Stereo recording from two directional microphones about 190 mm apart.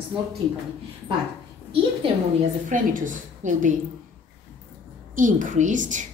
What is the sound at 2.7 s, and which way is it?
A woman's voice, 45° right (ahead or behind).